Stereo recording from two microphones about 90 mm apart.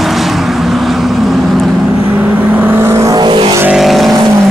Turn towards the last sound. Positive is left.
turn(degrees=0)  # may be behind; listen again after turning